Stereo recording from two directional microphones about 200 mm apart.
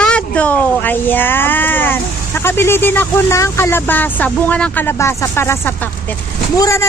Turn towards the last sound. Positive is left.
turn(degrees=15)  # may be behind; listen again after turning